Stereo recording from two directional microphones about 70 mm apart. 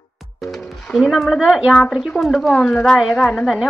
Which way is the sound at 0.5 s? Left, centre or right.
Centre.